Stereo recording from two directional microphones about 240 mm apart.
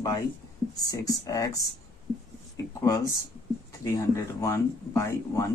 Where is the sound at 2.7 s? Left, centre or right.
Centre.